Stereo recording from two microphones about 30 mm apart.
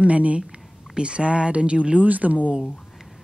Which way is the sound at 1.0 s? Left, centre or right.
Right.